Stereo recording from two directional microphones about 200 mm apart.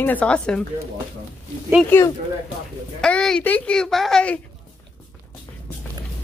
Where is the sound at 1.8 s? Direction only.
10° left (ahead or behind).